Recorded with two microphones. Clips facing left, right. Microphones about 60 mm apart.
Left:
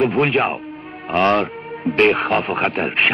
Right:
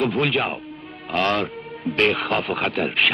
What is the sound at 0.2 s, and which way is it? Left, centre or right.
Speech, left.